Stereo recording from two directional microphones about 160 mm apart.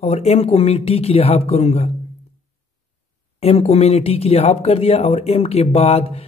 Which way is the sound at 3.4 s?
40° left (ahead or behind).